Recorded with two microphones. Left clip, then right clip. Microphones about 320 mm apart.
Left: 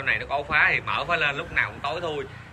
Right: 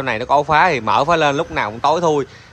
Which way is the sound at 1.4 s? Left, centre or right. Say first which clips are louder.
Right 8 dB; centre.